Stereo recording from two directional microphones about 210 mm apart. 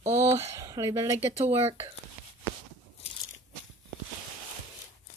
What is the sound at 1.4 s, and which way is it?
Speech, 30° right (ahead or behind).